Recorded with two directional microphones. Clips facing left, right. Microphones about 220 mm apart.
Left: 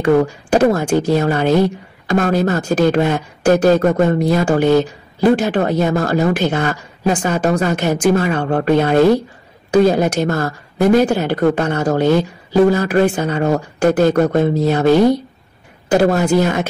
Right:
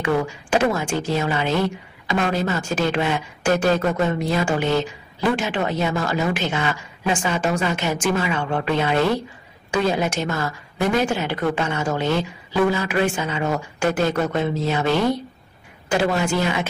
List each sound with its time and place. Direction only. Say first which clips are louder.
0.0 s speech: left 8 dB; 40° left (ahead or behind)